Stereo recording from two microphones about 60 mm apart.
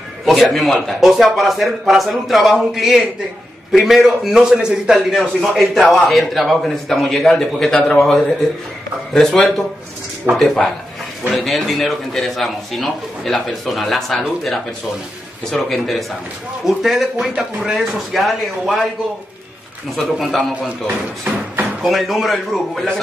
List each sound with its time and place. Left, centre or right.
0.2 s a man's voice: centre
20.2 s a man's voice: centre
21.6 s a man's voice: centre